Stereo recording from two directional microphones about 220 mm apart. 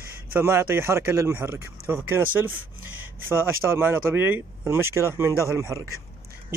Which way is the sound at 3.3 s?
10° right (ahead or behind).